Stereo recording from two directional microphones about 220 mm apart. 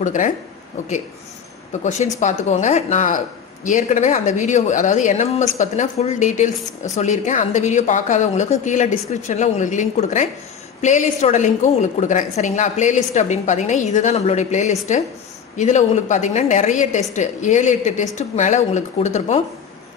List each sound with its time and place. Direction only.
0.0 s speech: 35° left (ahead or behind)
1.8 s speech: 35° left (ahead or behind)